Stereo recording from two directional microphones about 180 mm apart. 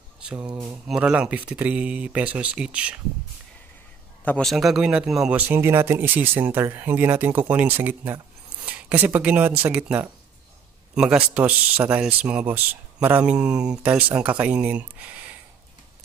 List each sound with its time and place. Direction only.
0.2 s mantra: 5° right (ahead or behind)
0.5 s speech: 20° right (ahead or behind)
0.8 s speech: 5° right (ahead or behind)
4.2 s speech: 5° left (ahead or behind)